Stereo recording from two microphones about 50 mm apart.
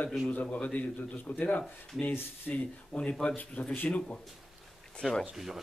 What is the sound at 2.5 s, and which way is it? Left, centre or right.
A man's voice, left.